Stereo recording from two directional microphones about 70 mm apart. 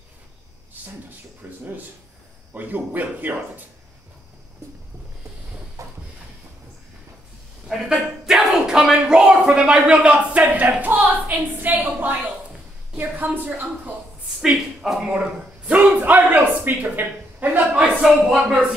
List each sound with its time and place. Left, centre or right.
1.4 s a man's voice: right
5.8 s a sound: right
7.6 s a man's voice: centre; by 13.7 s right
14.4 s a man's voice: centre; by 17.5 s right
18.0 s speech: centre